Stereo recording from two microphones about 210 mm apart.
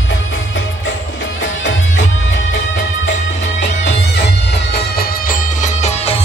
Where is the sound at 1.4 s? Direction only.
60° left (ahead or behind).